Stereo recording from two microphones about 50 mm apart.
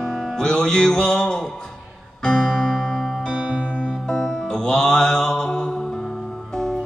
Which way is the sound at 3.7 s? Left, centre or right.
Left.